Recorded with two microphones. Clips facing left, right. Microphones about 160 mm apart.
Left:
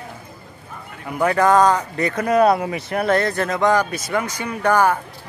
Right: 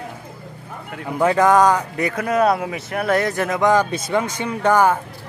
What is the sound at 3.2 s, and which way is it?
A man's voice, 15° right (ahead or behind).